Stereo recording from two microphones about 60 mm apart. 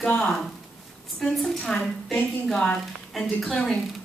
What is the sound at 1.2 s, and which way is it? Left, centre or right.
A woman's voice, centre.